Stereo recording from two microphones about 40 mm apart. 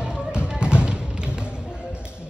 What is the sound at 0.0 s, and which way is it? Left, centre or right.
Music, right.